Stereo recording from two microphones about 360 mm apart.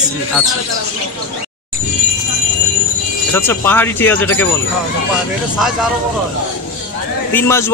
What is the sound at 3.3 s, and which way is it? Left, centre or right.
Speech, centre.